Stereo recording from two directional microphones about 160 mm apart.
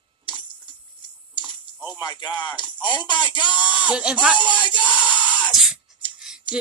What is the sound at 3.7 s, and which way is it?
Speech, 10° right (ahead or behind).